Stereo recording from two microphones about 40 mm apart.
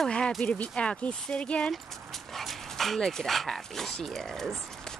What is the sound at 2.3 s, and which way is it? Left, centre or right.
Dog, centre.